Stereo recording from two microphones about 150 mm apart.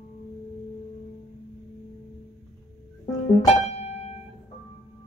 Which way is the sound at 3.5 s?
50° left (ahead or behind).